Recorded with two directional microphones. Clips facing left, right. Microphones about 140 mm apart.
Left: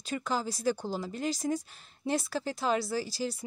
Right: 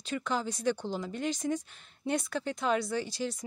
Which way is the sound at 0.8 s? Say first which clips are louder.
Even; 40° left (ahead or behind).